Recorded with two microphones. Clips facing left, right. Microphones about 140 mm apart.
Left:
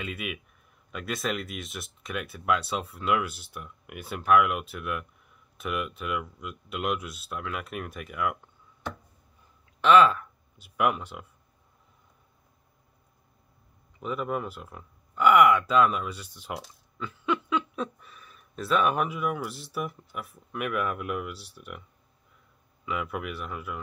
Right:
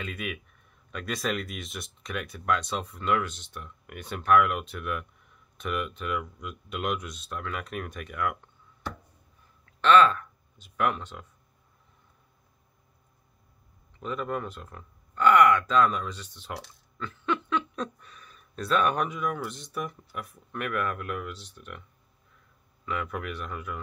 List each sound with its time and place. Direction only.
0.0 s speech: 5° left (ahead or behind)
9.8 s speech: 10° left (ahead or behind)
13.9 s speech: 10° left (ahead or behind)
22.8 s speech: 5° left (ahead or behind)